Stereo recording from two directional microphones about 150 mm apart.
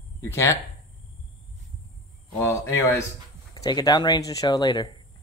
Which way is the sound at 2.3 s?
20° left (ahead or behind).